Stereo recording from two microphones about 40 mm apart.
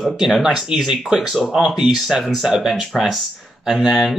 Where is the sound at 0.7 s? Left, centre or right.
Centre.